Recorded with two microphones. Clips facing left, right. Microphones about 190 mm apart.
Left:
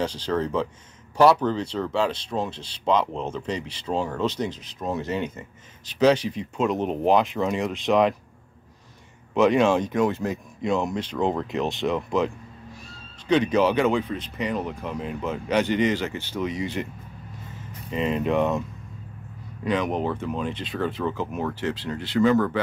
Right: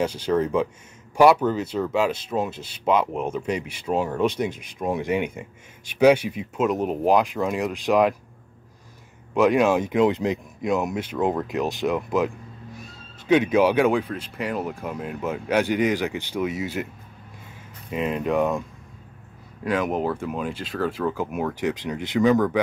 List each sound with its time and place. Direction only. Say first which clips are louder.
0.0 s speech: right 3 dB; 10° right (ahead or behind)
9.3 s speech: even; centre (ahead or behind); by 10.4 s 15° right (ahead or behind)
10.6 s speech: even; 5° right (ahead or behind)
13.3 s speech: right 2 dB; 10° right (ahead or behind)
19.6 s speech: right 1 dB; 5° right (ahead or behind)